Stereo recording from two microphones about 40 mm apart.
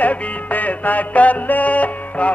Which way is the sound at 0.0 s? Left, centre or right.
Left.